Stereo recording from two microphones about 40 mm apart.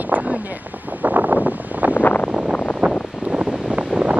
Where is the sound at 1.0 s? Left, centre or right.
Right.